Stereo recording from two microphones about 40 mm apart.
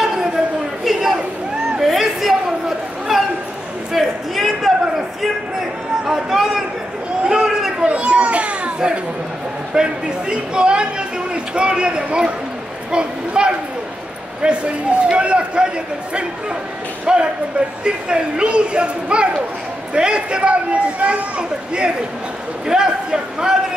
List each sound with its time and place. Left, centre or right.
1.8 s a sound: centre
6.0 s speech: centre
7.2 s a sound: centre
7.9 s children playing: right
8.7 s speech: right
17.0 s speech: right